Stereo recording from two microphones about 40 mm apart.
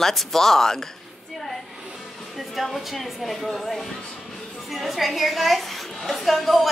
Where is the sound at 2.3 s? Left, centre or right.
Centre.